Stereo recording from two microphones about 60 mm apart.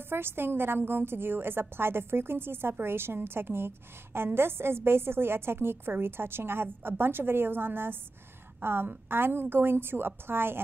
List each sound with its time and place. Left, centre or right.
0.1 s a woman's voice: right